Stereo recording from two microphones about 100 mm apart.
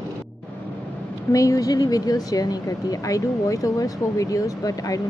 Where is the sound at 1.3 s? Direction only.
35° left (ahead or behind).